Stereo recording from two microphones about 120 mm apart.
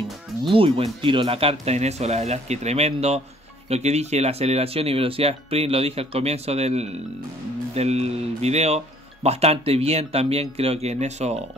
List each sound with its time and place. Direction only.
0.5 s speech: 50° right (ahead or behind); by 11.4 s 65° right (ahead or behind)